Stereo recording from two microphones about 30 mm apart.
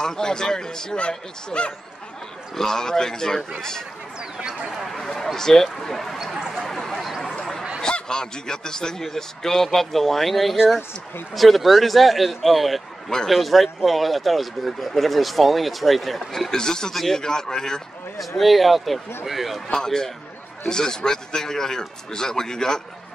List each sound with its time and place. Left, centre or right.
0.0 s speech: left
0.9 s speech: left
2.5 s speech: centre
5.2 s speech: centre
6.6 s a sound: centre
8.1 s speech: left
16.5 s speech: left
16.9 s a man's voice: centre
17.2 s speech: left
18.4 s speech: centre
19.7 s speech: left